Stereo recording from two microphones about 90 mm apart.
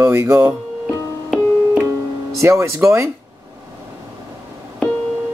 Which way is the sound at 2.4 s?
30° right (ahead or behind).